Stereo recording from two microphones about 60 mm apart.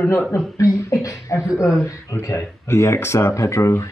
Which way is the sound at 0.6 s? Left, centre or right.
Left.